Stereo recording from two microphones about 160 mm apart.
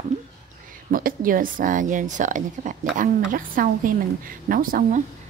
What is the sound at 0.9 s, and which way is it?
A woman's voice, 60° right (ahead or behind).